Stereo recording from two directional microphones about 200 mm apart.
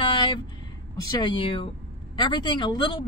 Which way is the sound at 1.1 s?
25° left (ahead or behind).